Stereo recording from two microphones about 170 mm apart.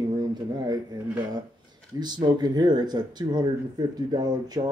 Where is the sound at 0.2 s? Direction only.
25° right (ahead or behind).